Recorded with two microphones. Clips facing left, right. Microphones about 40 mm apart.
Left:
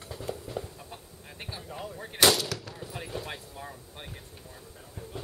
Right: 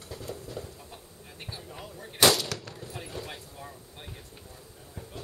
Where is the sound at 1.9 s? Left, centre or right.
Left.